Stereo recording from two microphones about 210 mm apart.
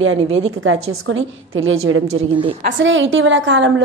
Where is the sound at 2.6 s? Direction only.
65° right (ahead or behind).